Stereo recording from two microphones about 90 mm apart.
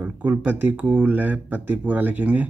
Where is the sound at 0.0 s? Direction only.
20° right (ahead or behind).